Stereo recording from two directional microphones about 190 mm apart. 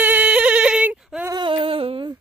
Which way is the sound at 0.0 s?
10° right (ahead or behind).